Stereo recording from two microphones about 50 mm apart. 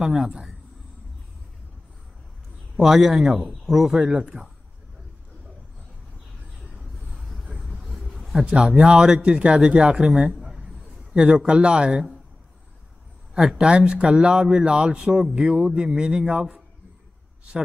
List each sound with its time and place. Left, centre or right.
0.0 s speech: centre
2.8 s a man's voice: centre
7.2 s vehicle: centre
8.8 s speech: centre
13.6 s speech: centre